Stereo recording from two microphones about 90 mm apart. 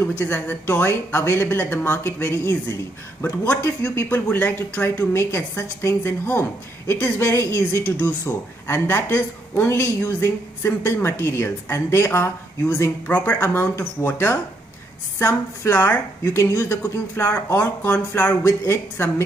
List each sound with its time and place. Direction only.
0.2 s a woman's voice: 25° left (ahead or behind)
13.1 s a woman's voice: 25° left (ahead or behind)